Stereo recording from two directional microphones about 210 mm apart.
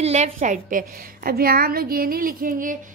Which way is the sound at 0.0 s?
30° right (ahead or behind).